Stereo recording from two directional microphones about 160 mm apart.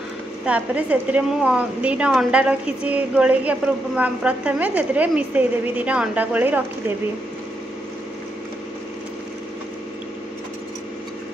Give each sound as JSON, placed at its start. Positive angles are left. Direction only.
{"t": 0.5, "sound": "a woman's voice", "side_deg": -10}